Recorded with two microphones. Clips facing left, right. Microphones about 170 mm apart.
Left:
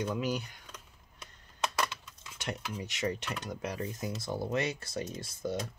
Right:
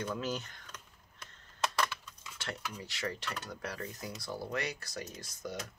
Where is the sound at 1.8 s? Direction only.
15° left (ahead or behind).